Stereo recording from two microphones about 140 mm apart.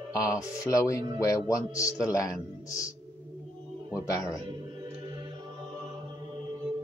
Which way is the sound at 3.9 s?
25° left (ahead or behind).